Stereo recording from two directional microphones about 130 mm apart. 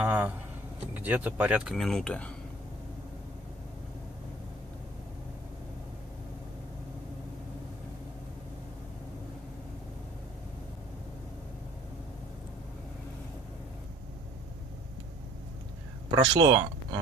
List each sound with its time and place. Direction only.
0.0 s speech: 15° right (ahead or behind)
1.8 s speech: 5° left (ahead or behind)
16.2 s speech: 30° right (ahead or behind)